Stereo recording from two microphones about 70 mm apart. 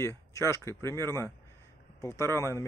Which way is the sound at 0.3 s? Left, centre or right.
Left.